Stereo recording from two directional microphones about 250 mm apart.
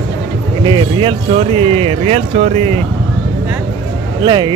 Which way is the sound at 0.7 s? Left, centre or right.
Centre.